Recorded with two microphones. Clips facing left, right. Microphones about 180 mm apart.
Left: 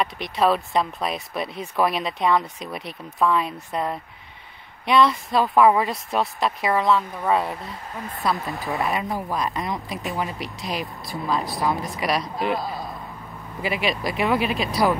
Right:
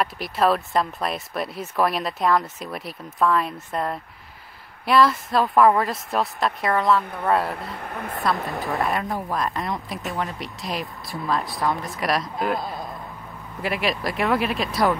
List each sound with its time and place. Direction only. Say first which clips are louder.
0.0 s speech: even; centre (ahead or behind)
7.7 s speech: right 3 dB; 60° right (ahead or behind)
8.5 s speech: right 1 dB; centre (ahead or behind)